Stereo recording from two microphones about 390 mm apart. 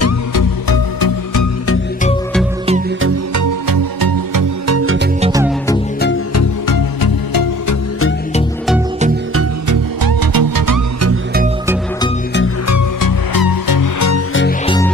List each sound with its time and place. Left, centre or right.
0.0 s music: left
3.3 s music: right
4.7 s music: right
5.2 s music: centre
6.7 s music: left
9.7 s music: right
12.6 s music: left
13.3 s music: left